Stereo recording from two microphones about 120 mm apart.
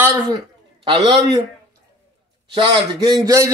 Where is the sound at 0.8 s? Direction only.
45° right (ahead or behind).